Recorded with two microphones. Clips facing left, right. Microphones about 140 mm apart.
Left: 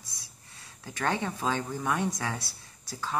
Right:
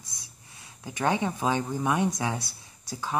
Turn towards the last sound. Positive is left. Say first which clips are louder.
# right 2 dB
turn(degrees=-15)  # may be behind; listen again after turning